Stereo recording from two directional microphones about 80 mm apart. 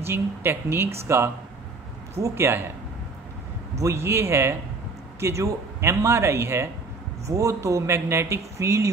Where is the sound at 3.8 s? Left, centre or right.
Right.